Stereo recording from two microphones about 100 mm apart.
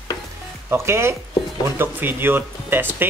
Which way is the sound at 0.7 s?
25° right (ahead or behind).